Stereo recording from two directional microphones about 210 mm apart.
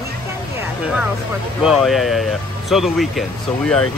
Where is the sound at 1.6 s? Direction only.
Centre (ahead or behind).